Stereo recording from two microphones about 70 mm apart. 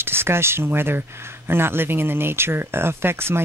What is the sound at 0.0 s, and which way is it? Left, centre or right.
Speech, right.